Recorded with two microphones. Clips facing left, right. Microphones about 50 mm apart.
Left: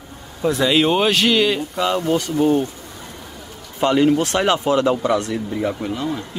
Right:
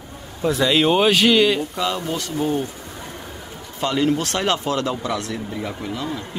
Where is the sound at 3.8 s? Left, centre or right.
Centre.